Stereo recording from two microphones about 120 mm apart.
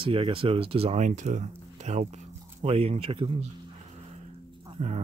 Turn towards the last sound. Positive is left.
turn(degrees=-90)